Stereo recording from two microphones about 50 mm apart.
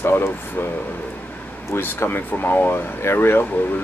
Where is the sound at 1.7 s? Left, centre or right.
Left.